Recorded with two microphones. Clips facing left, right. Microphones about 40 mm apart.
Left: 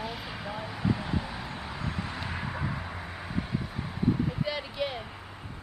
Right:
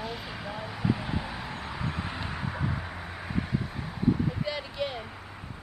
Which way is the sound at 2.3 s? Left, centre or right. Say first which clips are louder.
Right 1 dB; centre.